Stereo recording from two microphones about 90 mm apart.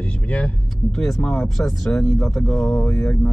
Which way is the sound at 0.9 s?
5° left (ahead or behind).